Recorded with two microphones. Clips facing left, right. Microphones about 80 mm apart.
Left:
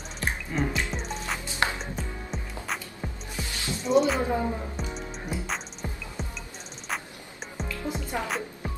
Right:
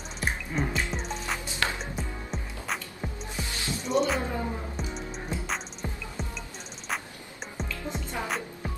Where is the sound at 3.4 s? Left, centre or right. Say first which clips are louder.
Left 1 dB; right.